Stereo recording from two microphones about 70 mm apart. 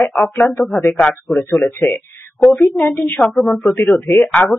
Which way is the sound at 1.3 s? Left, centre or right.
Centre.